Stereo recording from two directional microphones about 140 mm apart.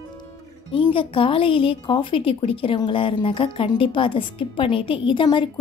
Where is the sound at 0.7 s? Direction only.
40° left (ahead or behind).